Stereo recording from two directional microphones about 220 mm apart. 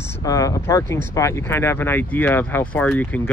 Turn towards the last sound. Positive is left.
turn(degrees=5)  # may be behind; listen again after turning